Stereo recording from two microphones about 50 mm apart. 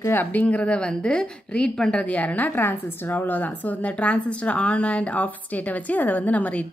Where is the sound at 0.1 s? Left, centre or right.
Left; by 2.0 s centre.